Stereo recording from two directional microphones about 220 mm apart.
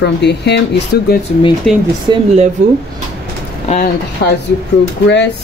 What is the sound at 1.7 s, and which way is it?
Speech, centre (ahead or behind).